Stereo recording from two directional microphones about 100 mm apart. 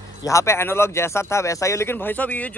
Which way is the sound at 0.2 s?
30° left (ahead or behind).